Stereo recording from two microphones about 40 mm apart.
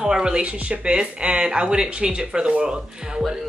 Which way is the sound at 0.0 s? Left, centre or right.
Centre.